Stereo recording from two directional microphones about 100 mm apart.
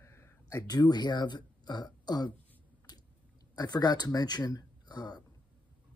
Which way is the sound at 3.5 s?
40° left (ahead or behind).